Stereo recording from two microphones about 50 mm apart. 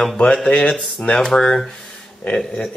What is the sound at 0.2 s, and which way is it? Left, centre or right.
Speech, centre.